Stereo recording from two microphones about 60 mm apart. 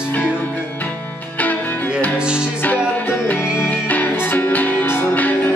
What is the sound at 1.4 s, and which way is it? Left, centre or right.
Music, left.